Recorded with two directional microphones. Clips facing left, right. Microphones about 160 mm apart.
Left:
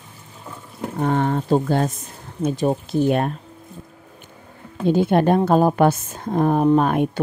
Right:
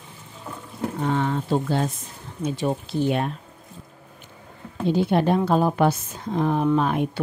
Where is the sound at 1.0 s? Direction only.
50° left (ahead or behind).